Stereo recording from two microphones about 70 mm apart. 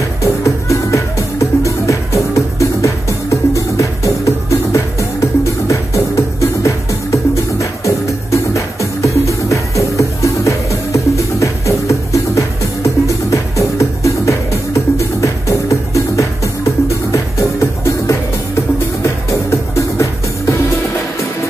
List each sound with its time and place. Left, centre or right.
0.2 s music: left
9.5 s music: left